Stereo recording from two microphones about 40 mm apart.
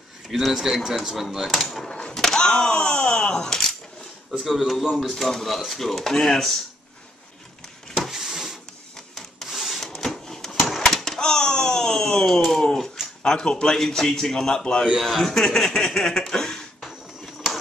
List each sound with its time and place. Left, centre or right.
0.4 s speech: centre
1.9 s speech: left
2.7 s speech: left
3.3 s speech: centre
4.3 s speech: centre
8.1 s printer: centre
8.9 s printer: centre
9.8 s a sound: centre
13.2 s speech: centre
15.0 s speech: centre